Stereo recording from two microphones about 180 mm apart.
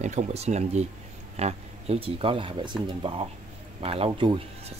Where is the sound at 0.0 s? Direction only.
40° right (ahead or behind).